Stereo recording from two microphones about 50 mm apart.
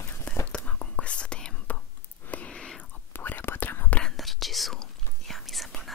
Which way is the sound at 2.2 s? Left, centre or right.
Left.